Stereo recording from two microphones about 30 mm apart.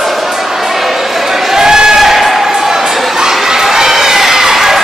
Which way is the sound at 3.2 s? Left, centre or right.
Centre.